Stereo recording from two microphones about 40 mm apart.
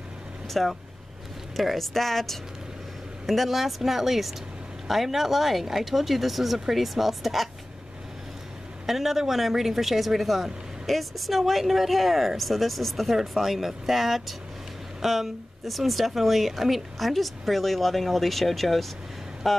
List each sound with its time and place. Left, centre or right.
0.5 s speech: centre
8.8 s speech: centre